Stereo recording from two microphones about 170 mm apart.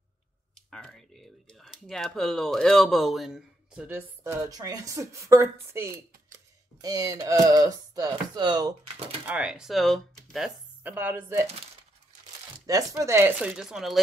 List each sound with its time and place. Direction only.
0.7 s speech: 5° left (ahead or behind); by 8.7 s 25° right (ahead or behind)
9.3 s speech: 5° right (ahead or behind)
12.6 s speech: 20° right (ahead or behind); by 14.0 s centre (ahead or behind)